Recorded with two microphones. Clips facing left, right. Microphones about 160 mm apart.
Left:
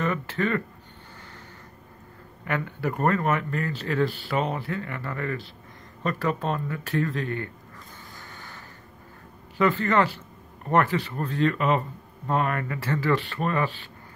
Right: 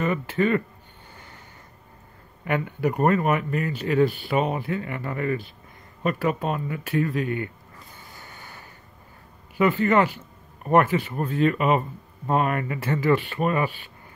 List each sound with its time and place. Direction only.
0.0 s speech: 15° right (ahead or behind)
2.4 s a man's voice: 15° right (ahead or behind)
8.1 s vehicle: 15° right (ahead or behind)
9.6 s a man's voice: 15° right (ahead or behind)